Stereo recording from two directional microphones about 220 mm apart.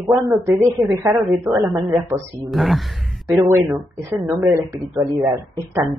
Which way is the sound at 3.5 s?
10° right (ahead or behind).